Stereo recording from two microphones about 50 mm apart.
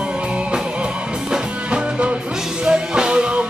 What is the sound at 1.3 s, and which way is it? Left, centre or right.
Music, centre.